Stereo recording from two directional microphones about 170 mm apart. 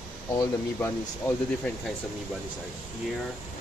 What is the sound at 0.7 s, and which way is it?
Speech, 15° left (ahead or behind).